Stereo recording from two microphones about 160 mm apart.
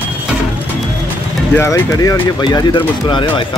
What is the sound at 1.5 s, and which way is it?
Speech, 15° left (ahead or behind).